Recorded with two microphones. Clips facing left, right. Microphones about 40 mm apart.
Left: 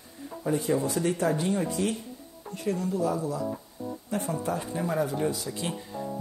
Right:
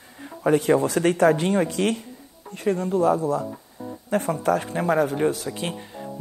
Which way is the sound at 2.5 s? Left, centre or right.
Right.